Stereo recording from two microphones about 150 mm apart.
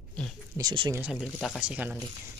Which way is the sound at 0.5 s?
30° right (ahead or behind).